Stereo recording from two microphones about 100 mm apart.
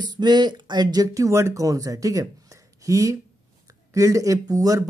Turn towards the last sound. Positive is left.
turn(degrees=-35)  # may be behind; listen again after turning